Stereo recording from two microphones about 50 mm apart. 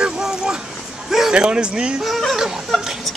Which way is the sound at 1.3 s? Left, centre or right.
Centre.